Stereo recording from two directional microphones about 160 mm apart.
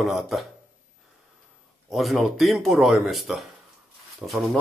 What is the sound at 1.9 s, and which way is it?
Speech, centre (ahead or behind).